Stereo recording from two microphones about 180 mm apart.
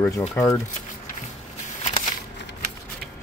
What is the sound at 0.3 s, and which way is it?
Speech, 15° left (ahead or behind).